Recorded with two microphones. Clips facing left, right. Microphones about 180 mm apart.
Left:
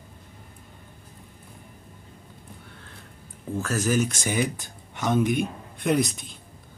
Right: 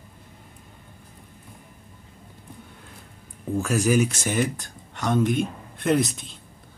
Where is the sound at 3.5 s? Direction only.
10° right (ahead or behind).